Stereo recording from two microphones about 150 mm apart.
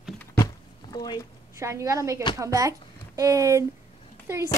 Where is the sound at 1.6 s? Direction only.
20° right (ahead or behind).